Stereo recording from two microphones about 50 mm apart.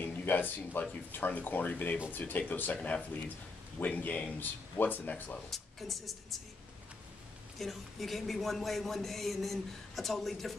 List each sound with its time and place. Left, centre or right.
0.0 s speech: left
5.5 s a woman's voice: centre
7.5 s a man's voice: centre